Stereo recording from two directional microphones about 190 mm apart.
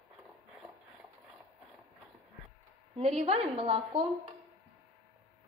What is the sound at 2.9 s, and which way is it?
A woman's voice, 35° right (ahead or behind).